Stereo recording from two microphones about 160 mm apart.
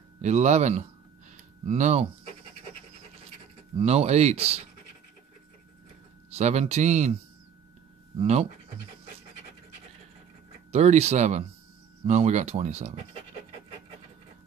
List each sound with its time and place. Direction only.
0.2 s speech: 45° right (ahead or behind)
1.3 s a sound: 45° right (ahead or behind)
3.7 s speech: 40° right (ahead or behind)
6.3 s speech: 45° right (ahead or behind)
8.2 s speech: 45° right (ahead or behind)
10.7 s speech: 45° right (ahead or behind)